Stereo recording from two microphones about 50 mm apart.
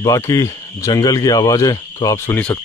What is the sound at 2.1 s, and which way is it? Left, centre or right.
Speech, left.